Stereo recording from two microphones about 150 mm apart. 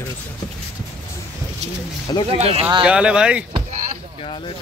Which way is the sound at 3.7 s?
55° right (ahead or behind).